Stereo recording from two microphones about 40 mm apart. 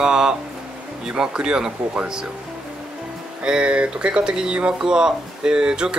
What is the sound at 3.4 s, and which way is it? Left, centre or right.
Speech, right.